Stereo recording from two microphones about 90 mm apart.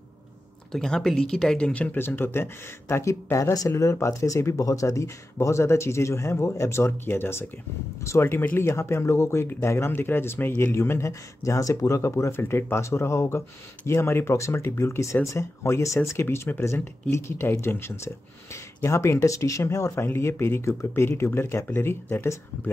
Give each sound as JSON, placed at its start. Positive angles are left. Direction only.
{"t": 0.7, "sound": "speech", "side_deg": 5}